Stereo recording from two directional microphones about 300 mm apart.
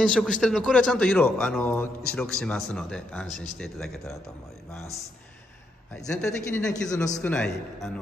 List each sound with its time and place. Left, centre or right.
0.0 s a man's voice: centre
5.9 s a man's voice: centre